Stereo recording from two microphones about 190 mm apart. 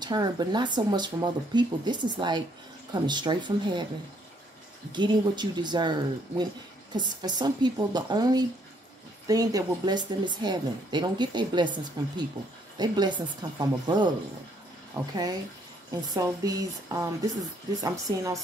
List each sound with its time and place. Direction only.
0.0 s speech: 20° right (ahead or behind)
4.9 s speech: 25° right (ahead or behind)